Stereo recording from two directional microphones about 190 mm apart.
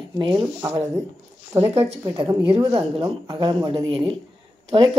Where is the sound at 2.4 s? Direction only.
30° right (ahead or behind).